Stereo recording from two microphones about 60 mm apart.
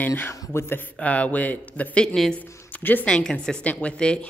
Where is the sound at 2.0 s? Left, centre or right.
Centre.